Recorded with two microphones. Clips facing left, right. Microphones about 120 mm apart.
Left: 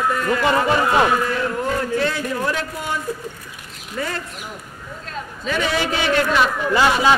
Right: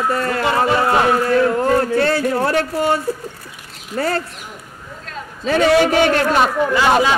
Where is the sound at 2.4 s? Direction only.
65° right (ahead or behind).